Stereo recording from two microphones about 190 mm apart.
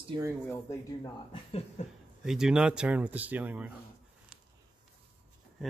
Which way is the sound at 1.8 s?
35° left (ahead or behind).